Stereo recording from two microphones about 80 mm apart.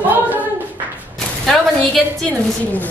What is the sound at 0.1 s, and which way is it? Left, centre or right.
Clapping, right.